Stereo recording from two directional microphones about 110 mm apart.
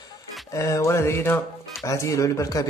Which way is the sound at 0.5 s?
30° left (ahead or behind).